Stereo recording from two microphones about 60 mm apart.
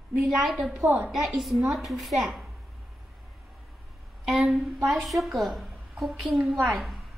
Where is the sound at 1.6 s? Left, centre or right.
Centre.